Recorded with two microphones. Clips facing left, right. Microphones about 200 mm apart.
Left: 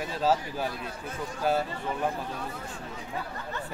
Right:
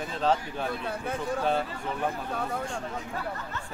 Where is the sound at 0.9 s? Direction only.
60° right (ahead or behind).